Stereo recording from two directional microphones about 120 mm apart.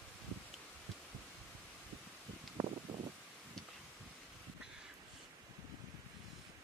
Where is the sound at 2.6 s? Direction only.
20° right (ahead or behind).